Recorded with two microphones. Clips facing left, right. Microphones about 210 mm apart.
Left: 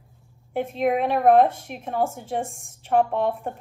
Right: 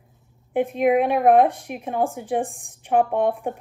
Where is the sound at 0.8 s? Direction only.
5° right (ahead or behind).